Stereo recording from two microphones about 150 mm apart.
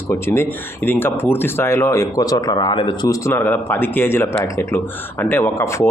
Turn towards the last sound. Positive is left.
turn(degrees=15)  # may be behind; listen again after turning